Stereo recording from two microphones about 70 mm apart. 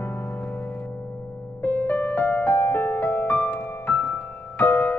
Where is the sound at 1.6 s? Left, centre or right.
Left.